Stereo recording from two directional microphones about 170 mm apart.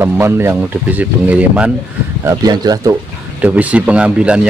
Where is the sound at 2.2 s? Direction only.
20° right (ahead or behind).